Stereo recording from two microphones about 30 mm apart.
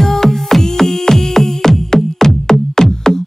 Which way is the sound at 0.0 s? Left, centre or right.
Centre.